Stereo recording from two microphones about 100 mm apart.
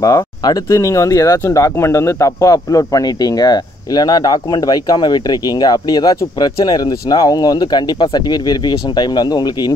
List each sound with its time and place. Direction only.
0.0 s speech: 40° left (ahead or behind)